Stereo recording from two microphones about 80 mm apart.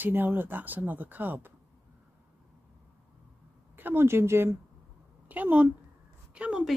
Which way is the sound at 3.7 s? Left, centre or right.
Right.